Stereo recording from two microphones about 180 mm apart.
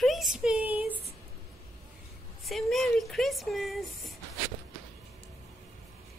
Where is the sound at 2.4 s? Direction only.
Centre (ahead or behind).